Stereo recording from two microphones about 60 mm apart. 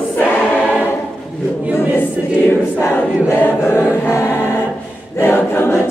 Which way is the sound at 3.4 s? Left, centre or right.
Left.